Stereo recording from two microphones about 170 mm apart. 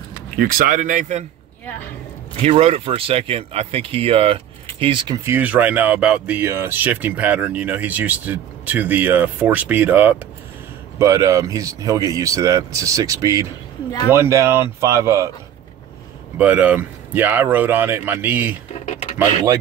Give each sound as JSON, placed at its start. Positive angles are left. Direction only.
{"t": 0.4, "sound": "speech", "side_deg": -55}
{"t": 2.4, "sound": "speech", "side_deg": -35}
{"t": 5.2, "sound": "speech", "side_deg": -10}
{"t": 16.3, "sound": "speech", "side_deg": -10}